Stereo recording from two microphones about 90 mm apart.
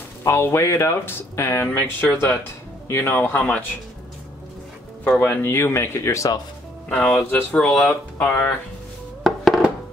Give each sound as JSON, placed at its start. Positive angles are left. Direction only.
{"t": 0.2, "sound": "speech", "side_deg": 30}
{"t": 5.2, "sound": "speech", "side_deg": 25}
{"t": 6.9, "sound": "speech", "side_deg": 15}
{"t": 8.2, "sound": "speech", "side_deg": 25}
{"t": 9.2, "sound": "music", "side_deg": 0}